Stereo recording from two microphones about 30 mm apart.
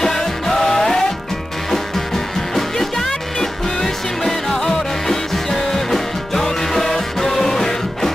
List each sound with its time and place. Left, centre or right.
0.0 s music: centre